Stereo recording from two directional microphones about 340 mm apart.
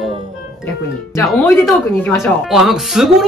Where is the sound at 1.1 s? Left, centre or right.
Centre.